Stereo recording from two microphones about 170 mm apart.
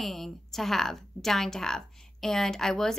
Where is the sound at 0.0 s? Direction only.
Centre (ahead or behind).